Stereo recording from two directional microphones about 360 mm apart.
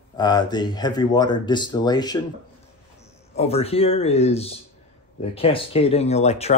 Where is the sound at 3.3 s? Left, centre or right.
Centre.